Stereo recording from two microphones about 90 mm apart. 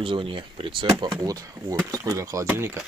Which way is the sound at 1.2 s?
40° right (ahead or behind).